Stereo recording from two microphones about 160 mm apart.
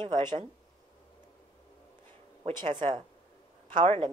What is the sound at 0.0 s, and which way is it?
Speech, 35° right (ahead or behind).